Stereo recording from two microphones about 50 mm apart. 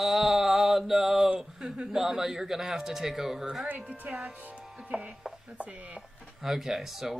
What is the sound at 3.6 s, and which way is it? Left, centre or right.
Speech, right.